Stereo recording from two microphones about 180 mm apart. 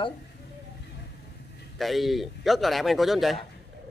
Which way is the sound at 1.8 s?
Centre (ahead or behind).